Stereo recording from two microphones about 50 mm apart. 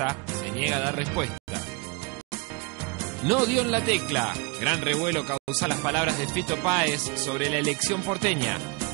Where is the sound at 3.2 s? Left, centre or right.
Right.